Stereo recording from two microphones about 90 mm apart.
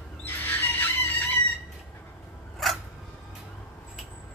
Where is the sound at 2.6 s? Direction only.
Centre (ahead or behind).